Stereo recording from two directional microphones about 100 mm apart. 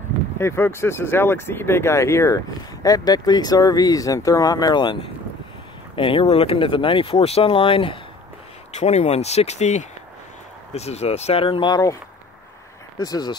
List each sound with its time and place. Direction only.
0.4 s speech: 25° left (ahead or behind); by 5.1 s 50° left (ahead or behind)
5.9 s speech: 60° left (ahead or behind)
8.8 s speech: 90° left
10.7 s speech: 90° left; by 11.7 s 65° left (ahead or behind)
11.7 s speech: 35° left (ahead or behind)
13.0 s speech: 40° left (ahead or behind)